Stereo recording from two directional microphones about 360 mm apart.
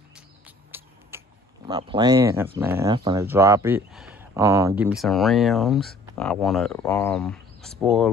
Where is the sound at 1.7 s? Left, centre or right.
Centre.